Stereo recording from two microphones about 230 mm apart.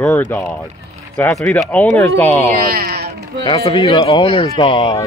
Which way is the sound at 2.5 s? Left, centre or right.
Right.